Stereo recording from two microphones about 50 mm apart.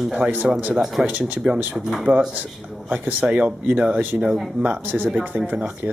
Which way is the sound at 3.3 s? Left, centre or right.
Right.